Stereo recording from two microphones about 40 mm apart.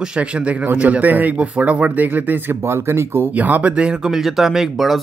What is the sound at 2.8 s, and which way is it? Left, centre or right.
Speech, right.